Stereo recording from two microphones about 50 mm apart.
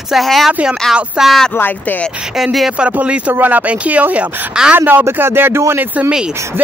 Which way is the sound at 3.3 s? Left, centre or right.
Right.